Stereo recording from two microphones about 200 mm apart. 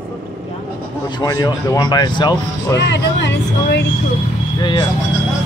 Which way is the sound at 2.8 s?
60° left (ahead or behind).